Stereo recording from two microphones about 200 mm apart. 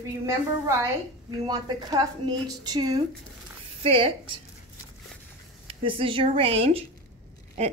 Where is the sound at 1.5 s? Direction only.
20° right (ahead or behind).